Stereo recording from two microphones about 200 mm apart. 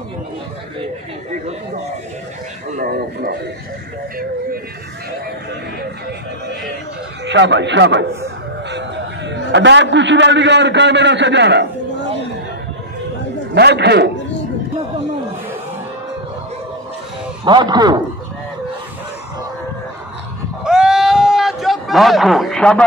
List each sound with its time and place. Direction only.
2.7 s speech: 50° right (ahead or behind)
7.2 s a man's voice: 60° right (ahead or behind)
13.6 s a man's voice: 55° right (ahead or behind)
17.5 s a man's voice: 20° right (ahead or behind)
20.6 s a sound: 5° right (ahead or behind)